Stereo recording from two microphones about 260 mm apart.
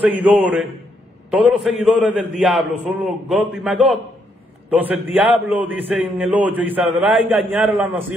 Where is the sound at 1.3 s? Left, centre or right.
Centre.